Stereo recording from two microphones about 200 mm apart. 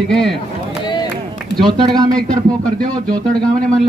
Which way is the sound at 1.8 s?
20° right (ahead or behind).